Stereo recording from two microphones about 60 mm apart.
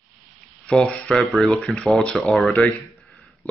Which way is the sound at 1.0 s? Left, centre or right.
Centre.